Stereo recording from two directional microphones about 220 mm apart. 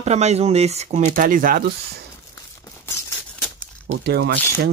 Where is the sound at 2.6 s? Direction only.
10° left (ahead or behind).